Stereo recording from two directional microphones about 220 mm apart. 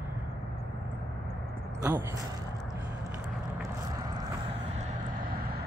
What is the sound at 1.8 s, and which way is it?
Speech, 10° right (ahead or behind).